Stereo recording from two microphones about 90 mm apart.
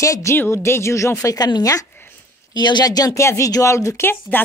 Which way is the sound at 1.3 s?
50° left (ahead or behind).